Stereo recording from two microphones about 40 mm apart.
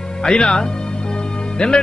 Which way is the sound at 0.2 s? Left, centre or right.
Left.